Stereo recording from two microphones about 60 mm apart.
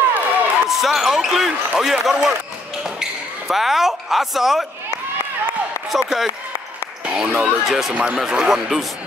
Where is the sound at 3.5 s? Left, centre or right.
Centre.